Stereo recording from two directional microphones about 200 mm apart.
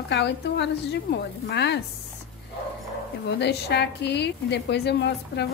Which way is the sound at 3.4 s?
55° left (ahead or behind).